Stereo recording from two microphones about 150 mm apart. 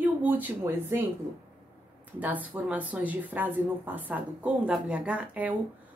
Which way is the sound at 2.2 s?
10° right (ahead or behind).